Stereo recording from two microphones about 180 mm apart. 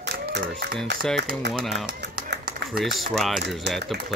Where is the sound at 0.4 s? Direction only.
60° right (ahead or behind).